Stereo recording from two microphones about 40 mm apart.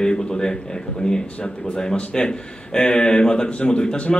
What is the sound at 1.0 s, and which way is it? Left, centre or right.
A man's voice, left.